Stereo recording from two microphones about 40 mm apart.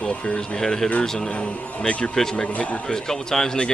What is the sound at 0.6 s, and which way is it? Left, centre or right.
Speech, centre.